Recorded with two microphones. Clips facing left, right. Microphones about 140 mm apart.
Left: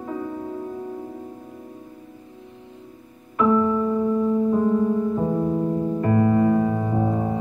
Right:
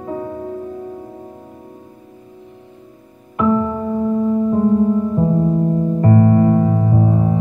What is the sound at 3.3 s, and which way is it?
Music, 45° right (ahead or behind).